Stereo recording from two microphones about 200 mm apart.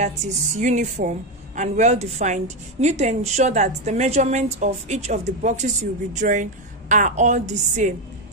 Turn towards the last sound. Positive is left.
turn(degrees=-35)  # may be behind; listen again after turning